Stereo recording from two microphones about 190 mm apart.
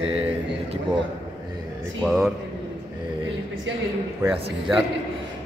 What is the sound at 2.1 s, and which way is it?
Speech, 5° right (ahead or behind).